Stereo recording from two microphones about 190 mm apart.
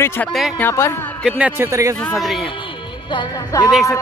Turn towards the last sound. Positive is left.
turn(degrees=20)  # may be behind; listen again after turning